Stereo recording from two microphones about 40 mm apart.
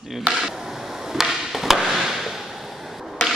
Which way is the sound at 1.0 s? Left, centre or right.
Centre.